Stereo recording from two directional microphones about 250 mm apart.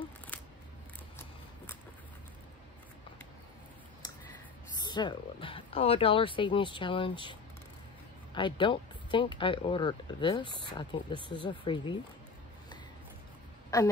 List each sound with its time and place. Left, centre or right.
0.3 s scissors: centre
4.7 s speech: centre
8.4 s speech: centre
13.7 s a woman's voice: centre